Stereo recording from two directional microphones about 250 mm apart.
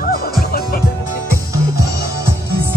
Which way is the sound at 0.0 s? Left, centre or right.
Left.